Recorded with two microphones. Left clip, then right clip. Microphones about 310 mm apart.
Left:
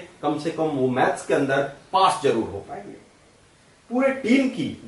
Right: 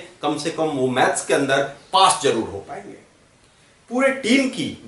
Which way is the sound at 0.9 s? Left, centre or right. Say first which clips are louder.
Right 4 dB; centre.